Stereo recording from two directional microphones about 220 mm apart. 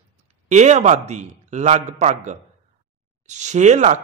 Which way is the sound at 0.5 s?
30° right (ahead or behind).